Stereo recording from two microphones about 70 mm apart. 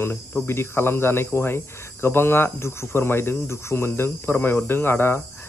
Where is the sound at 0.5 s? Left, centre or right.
Left.